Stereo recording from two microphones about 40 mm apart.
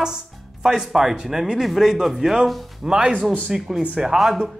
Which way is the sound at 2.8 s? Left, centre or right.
Centre.